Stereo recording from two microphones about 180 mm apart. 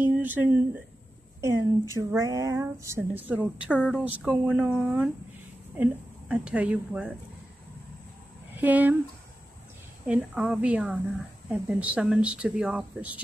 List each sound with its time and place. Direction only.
0.0 s a woman's voice: 10° right (ahead or behind)
8.5 s a woman's voice: 10° right (ahead or behind)
10.0 s a woman's voice: 5° right (ahead or behind)